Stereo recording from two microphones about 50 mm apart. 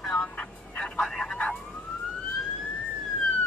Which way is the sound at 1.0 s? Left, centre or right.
Centre.